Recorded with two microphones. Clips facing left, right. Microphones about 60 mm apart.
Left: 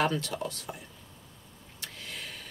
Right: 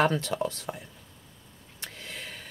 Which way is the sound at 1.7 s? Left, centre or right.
Right.